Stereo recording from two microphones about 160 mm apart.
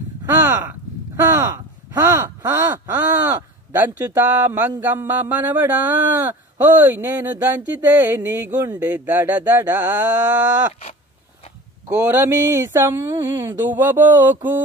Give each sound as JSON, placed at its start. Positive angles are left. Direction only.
{"t": 0.5, "sound": "a sound", "side_deg": -15}
{"t": 1.3, "sound": "gasp", "side_deg": -20}
{"t": 4.0, "sound": "speech", "side_deg": -15}
{"t": 11.9, "sound": "speech", "side_deg": -10}